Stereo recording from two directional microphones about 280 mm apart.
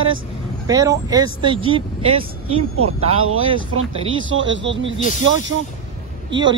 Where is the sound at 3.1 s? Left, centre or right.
Right.